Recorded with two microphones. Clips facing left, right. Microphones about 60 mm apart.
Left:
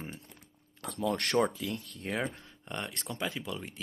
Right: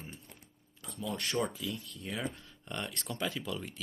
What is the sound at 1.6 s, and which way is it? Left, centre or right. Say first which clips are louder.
Speech: left 3 dB; left.